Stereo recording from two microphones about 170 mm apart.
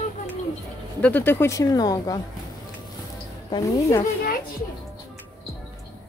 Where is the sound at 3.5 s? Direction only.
25° left (ahead or behind).